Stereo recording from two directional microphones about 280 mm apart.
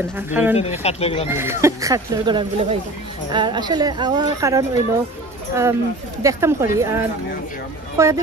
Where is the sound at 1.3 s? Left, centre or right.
Centre.